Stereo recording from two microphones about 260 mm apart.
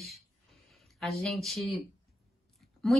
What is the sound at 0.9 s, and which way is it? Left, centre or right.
Speech, centre.